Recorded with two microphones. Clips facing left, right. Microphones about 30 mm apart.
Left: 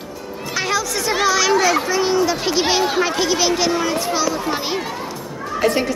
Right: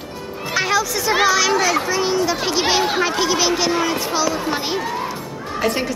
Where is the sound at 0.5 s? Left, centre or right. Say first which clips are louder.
Right 2 dB; centre.